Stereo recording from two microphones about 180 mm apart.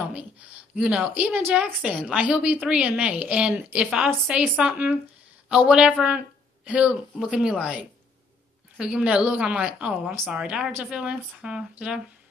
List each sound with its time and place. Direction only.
0.1 s a woman's voice: 10° right (ahead or behind)